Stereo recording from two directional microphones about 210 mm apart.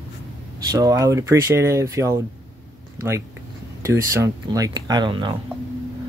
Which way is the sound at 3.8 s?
15° right (ahead or behind).